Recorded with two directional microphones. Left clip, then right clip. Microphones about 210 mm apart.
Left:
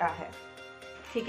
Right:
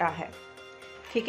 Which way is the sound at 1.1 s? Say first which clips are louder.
Right 4 dB; 55° right (ahead or behind).